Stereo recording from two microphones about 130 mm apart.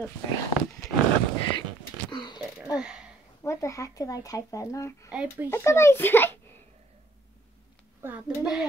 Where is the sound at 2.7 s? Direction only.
5° right (ahead or behind).